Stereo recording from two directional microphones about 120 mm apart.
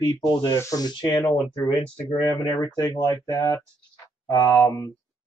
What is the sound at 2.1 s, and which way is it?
Speech, 40° left (ahead or behind).